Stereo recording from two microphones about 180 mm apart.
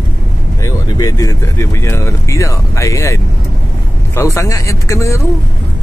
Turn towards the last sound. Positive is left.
turn(degrees=15)  # may be behind; listen again after turning